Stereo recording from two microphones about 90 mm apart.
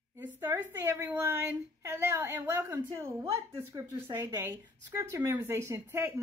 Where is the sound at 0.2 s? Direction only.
20° right (ahead or behind).